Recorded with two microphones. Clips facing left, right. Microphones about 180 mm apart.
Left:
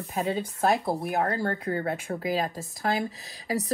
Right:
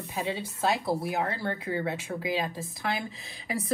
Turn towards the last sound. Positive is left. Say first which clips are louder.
# left 4 dB
turn(degrees=40)  # may be behind; listen again after turning